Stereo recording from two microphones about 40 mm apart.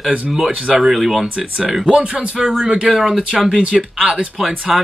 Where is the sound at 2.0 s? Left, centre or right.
Right.